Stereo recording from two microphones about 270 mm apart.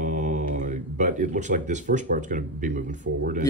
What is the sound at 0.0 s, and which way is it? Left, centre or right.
Speech, right.